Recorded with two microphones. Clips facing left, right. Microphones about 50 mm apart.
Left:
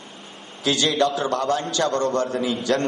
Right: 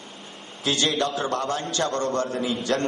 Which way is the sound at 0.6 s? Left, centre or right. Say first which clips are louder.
Left 3 dB; right.